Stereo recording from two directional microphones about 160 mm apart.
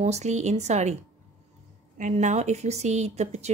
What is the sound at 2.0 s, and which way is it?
A woman's voice, 50° right (ahead or behind).